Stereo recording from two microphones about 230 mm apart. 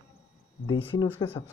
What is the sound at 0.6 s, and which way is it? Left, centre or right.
Speech, left.